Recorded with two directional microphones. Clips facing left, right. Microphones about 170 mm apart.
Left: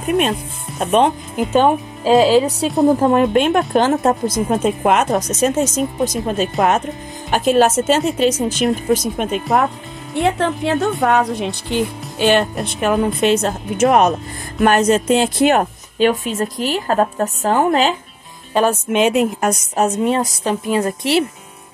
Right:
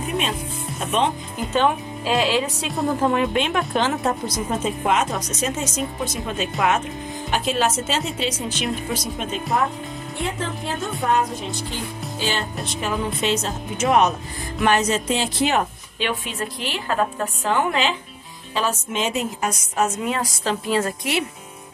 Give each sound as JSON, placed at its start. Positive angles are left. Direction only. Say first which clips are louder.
{"t": 0.7, "sound": "speech", "louder": "left 8 dB", "side_deg": 50}
{"t": 8.9, "sound": "speech", "louder": "left 9 dB", "side_deg": 55}
{"t": 10.2, "sound": "a woman's voice", "louder": "left 10 dB", "side_deg": 70}
{"t": 18.5, "sound": "speech", "louder": "left 8 dB", "side_deg": 55}
{"t": 19.7, "sound": "a woman's voice", "louder": "left 5 dB", "side_deg": 40}
{"t": 20.2, "sound": "a woman's voice", "louder": "left 5 dB", "side_deg": 20}
{"t": 21.0, "sound": "a woman's voice", "louder": "left 8 dB", "side_deg": 35}